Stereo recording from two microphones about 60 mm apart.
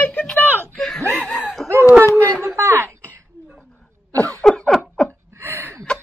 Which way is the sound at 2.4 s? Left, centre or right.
Right.